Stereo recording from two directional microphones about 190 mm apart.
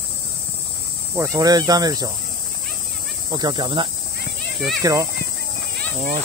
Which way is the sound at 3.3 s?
20° right (ahead or behind).